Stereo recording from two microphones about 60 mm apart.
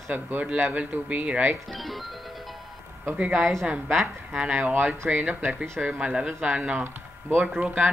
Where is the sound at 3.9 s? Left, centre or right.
Centre.